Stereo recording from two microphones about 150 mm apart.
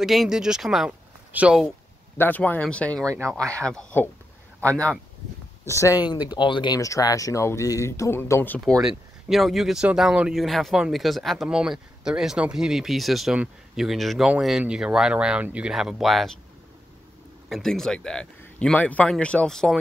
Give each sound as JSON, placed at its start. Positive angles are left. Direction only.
{"t": 0.0, "sound": "speech", "side_deg": 0}
{"t": 2.1, "sound": "speech", "side_deg": 10}
{"t": 5.7, "sound": "speech", "side_deg": 20}
{"t": 8.8, "sound": "speech", "side_deg": 0}
{"t": 17.5, "sound": "speech", "side_deg": 0}